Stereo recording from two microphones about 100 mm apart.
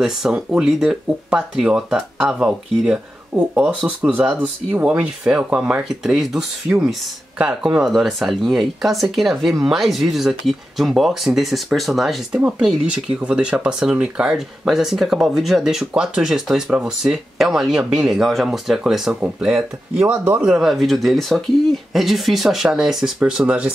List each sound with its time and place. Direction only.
0.0 s speech: 5° right (ahead or behind)
12.4 s speech: 15° right (ahead or behind)